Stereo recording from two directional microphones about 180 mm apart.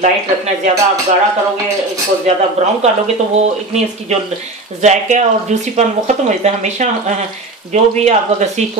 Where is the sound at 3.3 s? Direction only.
40° right (ahead or behind).